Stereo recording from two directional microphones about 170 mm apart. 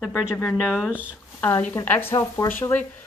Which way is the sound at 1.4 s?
15° left (ahead or behind).